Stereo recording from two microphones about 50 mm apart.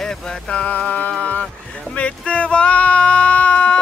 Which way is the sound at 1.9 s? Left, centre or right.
Left.